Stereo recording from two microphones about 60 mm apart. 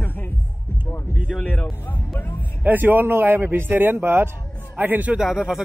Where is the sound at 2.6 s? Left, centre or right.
Right.